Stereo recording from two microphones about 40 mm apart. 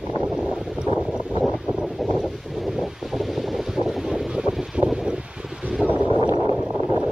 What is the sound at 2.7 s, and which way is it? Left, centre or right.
Boat, centre.